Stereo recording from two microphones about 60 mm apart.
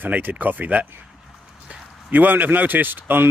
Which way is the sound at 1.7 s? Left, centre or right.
Right.